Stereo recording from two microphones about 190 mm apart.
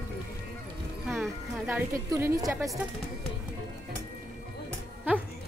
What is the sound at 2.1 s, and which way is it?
Speech, 15° right (ahead or behind).